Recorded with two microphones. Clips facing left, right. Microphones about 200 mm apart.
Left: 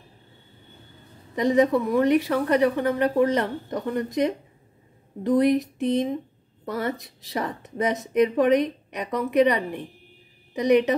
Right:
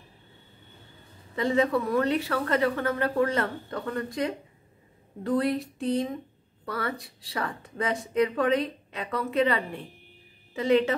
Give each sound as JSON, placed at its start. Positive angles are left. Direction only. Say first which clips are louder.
{"t": 1.3, "sound": "a woman's voice", "louder": "left 5 dB", "side_deg": 15}